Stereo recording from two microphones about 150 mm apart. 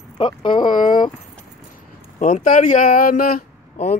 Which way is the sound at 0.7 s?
60° left (ahead or behind).